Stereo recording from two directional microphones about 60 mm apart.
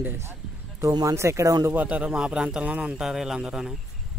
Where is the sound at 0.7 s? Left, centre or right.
Right.